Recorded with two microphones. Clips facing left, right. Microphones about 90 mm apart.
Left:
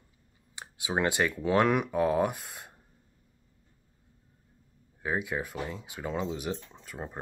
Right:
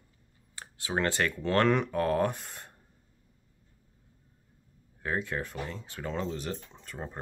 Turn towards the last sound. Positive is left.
turn(degrees=5)  # may be behind; listen again after turning